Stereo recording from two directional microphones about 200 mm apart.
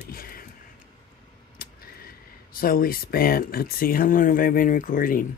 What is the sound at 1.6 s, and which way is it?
Speech, 45° left (ahead or behind).